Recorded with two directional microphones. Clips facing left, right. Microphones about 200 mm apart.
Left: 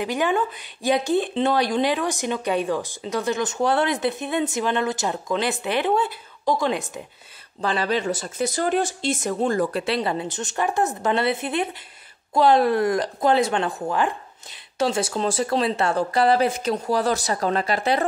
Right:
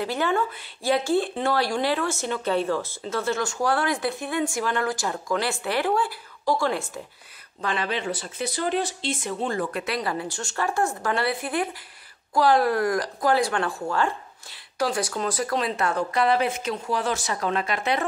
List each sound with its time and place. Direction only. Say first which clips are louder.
0.0 s speech: left 2 dB; 15° left (ahead or behind)
7.6 s speech: left 4 dB; 35° left (ahead or behind)